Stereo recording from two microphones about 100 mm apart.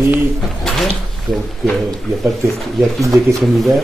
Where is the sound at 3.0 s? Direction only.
30° right (ahead or behind).